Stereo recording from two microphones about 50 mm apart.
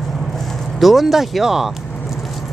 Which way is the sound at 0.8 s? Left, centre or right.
Centre.